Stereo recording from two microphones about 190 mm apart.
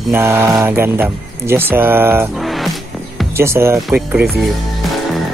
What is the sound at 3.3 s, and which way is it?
Speech, 15° right (ahead or behind).